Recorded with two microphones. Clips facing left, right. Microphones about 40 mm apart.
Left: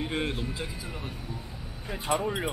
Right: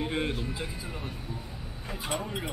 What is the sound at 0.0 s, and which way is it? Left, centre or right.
Speech, centre.